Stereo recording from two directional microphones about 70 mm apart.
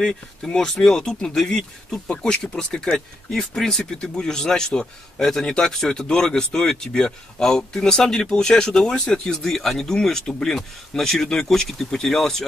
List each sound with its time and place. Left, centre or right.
0.0 s speech: centre